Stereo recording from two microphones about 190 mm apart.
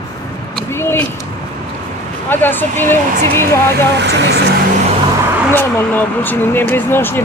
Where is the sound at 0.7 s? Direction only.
10° left (ahead or behind).